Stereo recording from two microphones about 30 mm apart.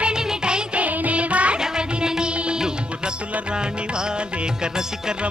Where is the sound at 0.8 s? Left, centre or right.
Right.